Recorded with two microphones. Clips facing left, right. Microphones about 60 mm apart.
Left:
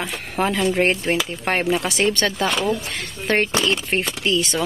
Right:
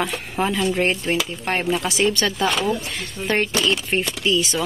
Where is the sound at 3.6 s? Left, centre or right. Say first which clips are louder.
Even; left.